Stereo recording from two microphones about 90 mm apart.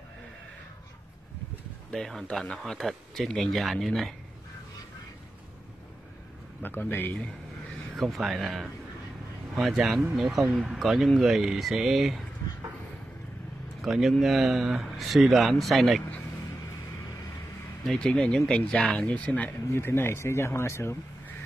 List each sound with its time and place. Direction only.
1.9 s speech: 5° left (ahead or behind)
6.6 s speech: 25° left (ahead or behind)
7.9 s speech: centre (ahead or behind)
13.8 s speech: centre (ahead or behind)
17.8 s speech: 10° left (ahead or behind); by 21.0 s 30° left (ahead or behind)